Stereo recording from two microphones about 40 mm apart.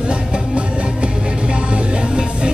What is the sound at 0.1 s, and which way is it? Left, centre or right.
Music, right.